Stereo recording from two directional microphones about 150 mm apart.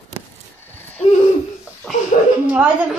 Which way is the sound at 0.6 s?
15° left (ahead or behind).